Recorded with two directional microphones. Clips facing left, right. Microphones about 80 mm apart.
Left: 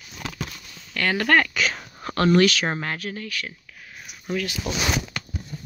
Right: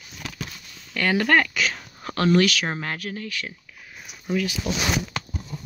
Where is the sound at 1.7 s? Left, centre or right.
Centre.